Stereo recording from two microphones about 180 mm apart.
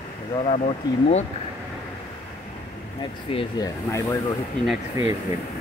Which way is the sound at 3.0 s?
25° left (ahead or behind).